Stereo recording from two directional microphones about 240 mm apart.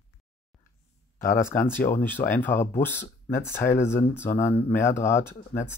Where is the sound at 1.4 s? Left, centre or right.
Centre.